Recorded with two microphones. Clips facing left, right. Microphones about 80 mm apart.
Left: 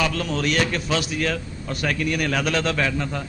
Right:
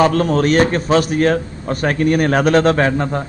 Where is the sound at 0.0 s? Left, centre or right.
Right.